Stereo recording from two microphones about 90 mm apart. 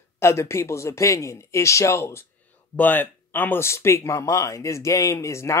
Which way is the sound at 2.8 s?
20° left (ahead or behind).